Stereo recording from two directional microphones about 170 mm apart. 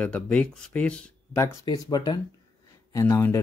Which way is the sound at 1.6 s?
25° left (ahead or behind).